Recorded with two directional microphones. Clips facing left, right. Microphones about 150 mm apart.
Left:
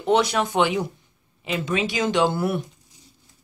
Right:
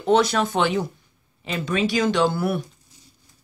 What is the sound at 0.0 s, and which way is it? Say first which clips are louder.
Speech: right 1 dB; 15° left (ahead or behind).